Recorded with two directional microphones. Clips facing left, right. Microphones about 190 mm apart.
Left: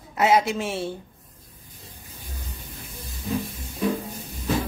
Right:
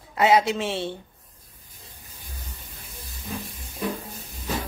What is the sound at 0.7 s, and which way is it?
Speech, 25° right (ahead or behind).